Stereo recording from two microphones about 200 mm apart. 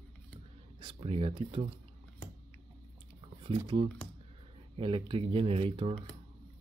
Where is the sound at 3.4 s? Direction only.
25° right (ahead or behind).